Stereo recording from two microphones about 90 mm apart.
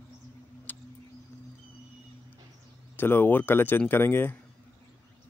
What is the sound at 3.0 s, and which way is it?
Speech, 25° left (ahead or behind).